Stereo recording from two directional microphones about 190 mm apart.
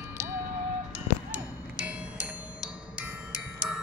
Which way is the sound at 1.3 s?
5° right (ahead or behind).